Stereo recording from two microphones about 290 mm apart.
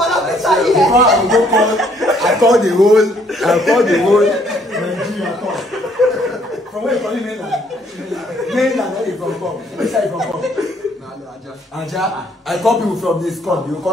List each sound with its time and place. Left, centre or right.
0.0 s a man's voice: centre
11.8 s a man's voice: centre